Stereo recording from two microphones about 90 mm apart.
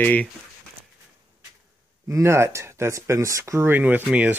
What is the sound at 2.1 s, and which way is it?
Speech, 30° right (ahead or behind).